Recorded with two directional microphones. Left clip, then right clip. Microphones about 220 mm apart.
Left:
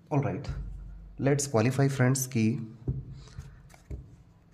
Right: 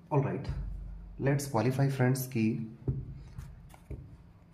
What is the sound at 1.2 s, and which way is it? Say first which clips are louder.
Speech: left 4 dB; 45° left (ahead or behind).